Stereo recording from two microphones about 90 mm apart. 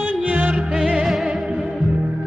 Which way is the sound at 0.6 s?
5° right (ahead or behind).